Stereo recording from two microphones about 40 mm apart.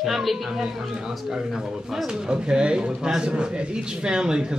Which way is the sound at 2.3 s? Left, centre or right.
Right.